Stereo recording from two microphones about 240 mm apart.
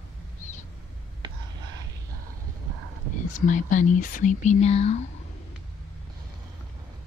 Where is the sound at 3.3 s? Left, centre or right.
Left.